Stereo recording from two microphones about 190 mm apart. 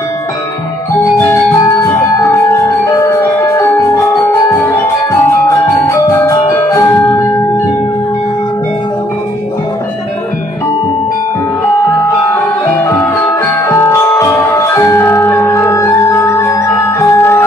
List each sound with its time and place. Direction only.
1.1 s music: 15° left (ahead or behind)
12.6 s music: 15° left (ahead or behind)